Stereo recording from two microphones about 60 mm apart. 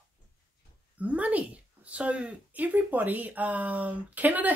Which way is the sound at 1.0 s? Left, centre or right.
Right.